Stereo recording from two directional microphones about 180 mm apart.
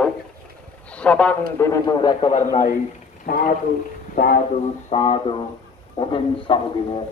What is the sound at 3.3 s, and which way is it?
Speech, 60° left (ahead or behind).